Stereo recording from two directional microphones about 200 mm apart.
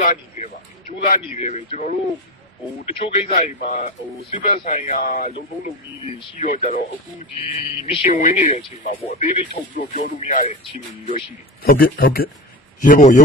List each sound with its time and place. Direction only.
0.0 s speech: 40° left (ahead or behind)
3.3 s speech: 40° left (ahead or behind)
6.4 s speech: 40° left (ahead or behind)
8.2 s speech: 40° left (ahead or behind)